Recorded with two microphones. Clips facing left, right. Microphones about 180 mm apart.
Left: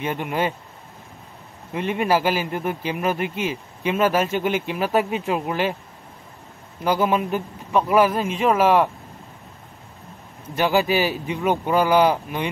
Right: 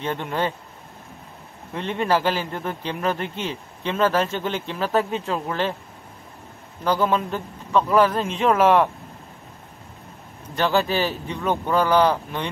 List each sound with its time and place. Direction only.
0.0 s a man's voice: 10° left (ahead or behind)
1.7 s a man's voice: 10° left (ahead or behind)
6.8 s a man's voice: 10° left (ahead or behind)
10.5 s a man's voice: 10° left (ahead or behind)